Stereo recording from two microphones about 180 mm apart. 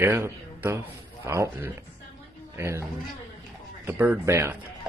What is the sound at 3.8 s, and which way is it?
Speech, 10° right (ahead or behind).